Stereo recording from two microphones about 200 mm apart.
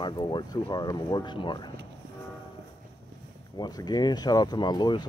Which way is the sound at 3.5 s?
20° left (ahead or behind).